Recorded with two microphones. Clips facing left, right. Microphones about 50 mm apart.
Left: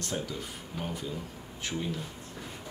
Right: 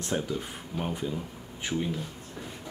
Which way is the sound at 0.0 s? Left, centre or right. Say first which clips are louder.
Right 4 dB; right.